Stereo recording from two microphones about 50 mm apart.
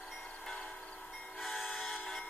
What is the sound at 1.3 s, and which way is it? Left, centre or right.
Train, centre.